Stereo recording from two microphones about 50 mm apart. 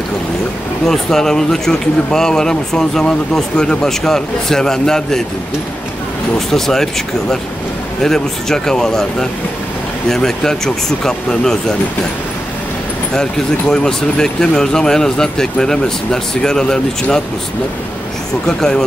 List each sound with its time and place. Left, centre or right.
0.8 s speech: centre
6.5 s speech: centre
13.1 s speech: centre
18.6 s speech: centre